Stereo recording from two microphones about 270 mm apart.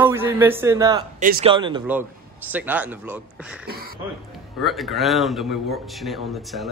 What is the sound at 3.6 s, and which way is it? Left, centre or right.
Speech, right.